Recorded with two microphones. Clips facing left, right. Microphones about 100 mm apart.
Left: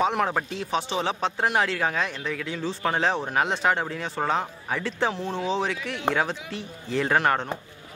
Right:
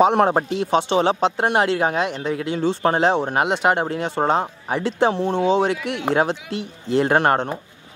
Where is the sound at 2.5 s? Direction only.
65° right (ahead or behind).